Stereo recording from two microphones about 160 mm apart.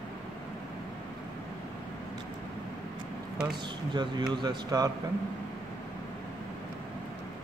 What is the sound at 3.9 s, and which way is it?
Speech, 25° right (ahead or behind).